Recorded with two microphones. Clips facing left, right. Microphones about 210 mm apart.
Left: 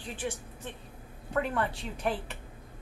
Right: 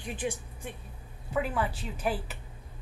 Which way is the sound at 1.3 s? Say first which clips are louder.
Even; 5° right (ahead or behind).